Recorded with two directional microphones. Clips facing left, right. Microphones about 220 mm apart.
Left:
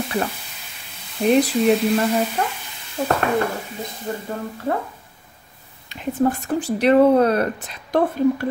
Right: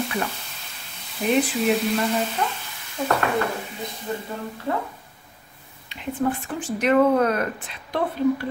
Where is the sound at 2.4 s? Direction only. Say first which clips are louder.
Left 2 dB; 50° left (ahead or behind).